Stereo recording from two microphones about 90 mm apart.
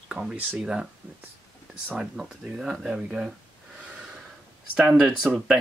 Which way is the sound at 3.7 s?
10° right (ahead or behind).